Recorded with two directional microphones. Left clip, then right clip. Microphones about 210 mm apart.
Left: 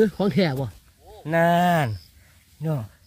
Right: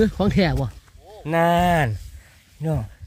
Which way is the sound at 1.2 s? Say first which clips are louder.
Right 1 dB; 25° right (ahead or behind).